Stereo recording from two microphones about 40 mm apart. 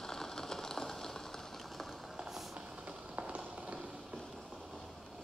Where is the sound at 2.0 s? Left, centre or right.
Centre.